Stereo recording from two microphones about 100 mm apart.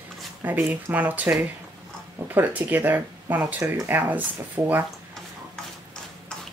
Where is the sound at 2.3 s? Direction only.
20° right (ahead or behind).